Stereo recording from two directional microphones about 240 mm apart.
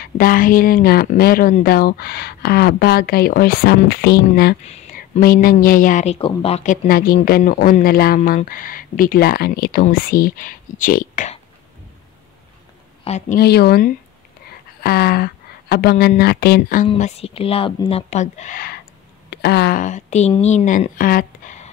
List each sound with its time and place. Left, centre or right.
0.0 s speech: left
4.6 s speech: left
13.0 s speech: left
13.4 s speech: left
16.8 s speech: left